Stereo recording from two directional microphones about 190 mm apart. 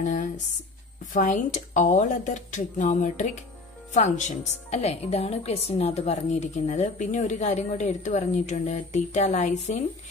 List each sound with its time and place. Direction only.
1.1 s a woman's voice: 40° left (ahead or behind)